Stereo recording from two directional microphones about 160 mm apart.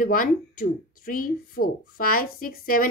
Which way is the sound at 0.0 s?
60° left (ahead or behind).